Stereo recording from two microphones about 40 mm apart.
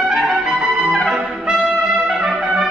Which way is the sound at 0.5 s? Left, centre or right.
Centre.